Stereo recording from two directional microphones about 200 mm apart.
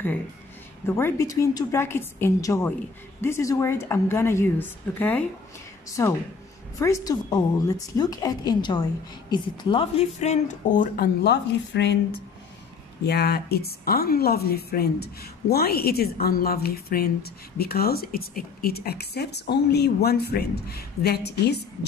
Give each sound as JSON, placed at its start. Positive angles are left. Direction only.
{"t": 0.8, "sound": "a woman's voice", "side_deg": 10}
{"t": 13.0, "sound": "a woman's voice", "side_deg": 55}